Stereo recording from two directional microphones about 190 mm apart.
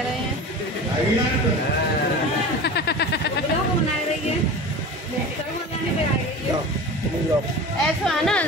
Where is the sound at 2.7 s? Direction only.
60° left (ahead or behind).